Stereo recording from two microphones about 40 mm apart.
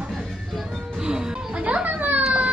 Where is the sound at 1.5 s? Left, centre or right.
Right.